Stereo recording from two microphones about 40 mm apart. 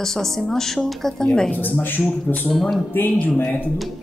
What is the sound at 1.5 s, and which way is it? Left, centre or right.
Speech, left.